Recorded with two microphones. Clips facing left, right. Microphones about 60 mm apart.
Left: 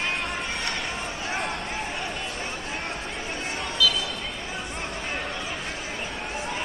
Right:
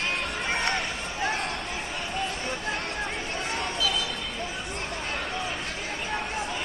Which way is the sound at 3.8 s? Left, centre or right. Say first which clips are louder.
Left 7 dB; right.